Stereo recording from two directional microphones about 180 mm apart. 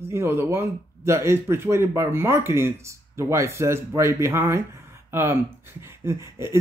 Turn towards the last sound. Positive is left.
turn(degrees=-15)  # may be behind; listen again after turning